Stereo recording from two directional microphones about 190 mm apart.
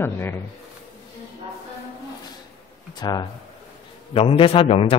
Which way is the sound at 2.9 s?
20° left (ahead or behind).